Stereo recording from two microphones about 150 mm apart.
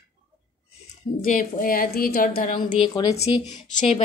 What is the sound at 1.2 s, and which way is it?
A woman's voice, 65° left (ahead or behind).